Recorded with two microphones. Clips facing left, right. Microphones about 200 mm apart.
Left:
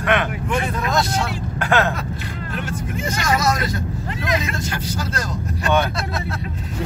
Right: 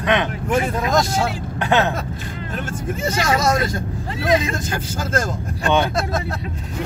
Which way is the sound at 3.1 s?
25° right (ahead or behind).